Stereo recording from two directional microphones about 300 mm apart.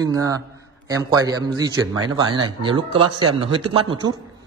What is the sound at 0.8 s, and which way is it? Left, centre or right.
A man's voice, centre.